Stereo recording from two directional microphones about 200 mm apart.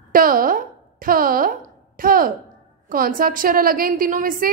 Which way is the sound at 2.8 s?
45° right (ahead or behind).